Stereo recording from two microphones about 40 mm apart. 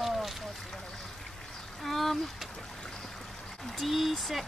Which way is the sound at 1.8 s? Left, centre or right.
Centre.